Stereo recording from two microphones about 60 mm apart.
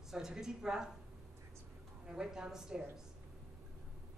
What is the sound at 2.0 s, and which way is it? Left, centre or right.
Speech, centre.